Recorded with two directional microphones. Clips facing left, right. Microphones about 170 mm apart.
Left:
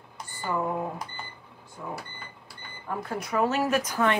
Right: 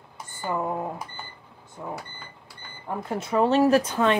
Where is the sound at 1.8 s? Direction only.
25° right (ahead or behind).